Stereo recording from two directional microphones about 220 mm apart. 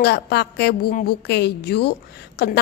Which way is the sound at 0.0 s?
50° left (ahead or behind).